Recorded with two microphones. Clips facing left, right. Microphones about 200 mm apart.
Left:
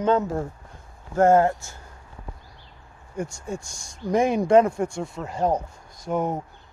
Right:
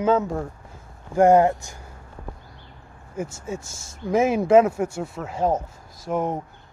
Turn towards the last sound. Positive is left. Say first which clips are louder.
# even
turn(degrees=0)  # may be behind; listen again after turning